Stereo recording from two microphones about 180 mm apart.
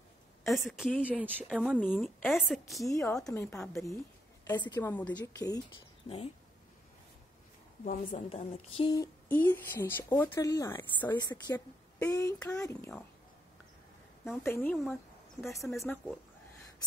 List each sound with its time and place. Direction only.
0.5 s a woman's voice: centre (ahead or behind)
1.8 s a woman's voice: 10° left (ahead or behind)
2.9 s a woman's voice: 15° left (ahead or behind)
7.8 s a woman's voice: 45° left (ahead or behind); by 11.1 s 10° left (ahead or behind)
11.1 s speech: 25° left (ahead or behind)
14.3 s a woman's voice: 10° left (ahead or behind)
15.5 s a woman's voice: centre (ahead or behind)